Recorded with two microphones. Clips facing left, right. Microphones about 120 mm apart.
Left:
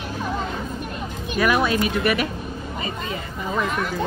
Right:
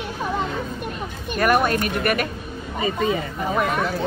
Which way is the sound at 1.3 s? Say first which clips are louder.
Right 1 dB; 50° right (ahead or behind).